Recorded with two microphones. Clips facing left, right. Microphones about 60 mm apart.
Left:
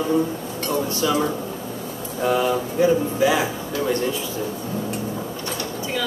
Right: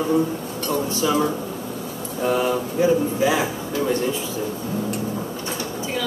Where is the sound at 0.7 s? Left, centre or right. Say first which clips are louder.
Even; centre.